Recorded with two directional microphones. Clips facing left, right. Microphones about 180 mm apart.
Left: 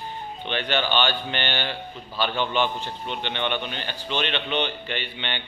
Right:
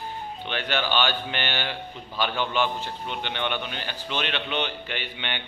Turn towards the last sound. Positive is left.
turn(degrees=-10)  # may be behind; listen again after turning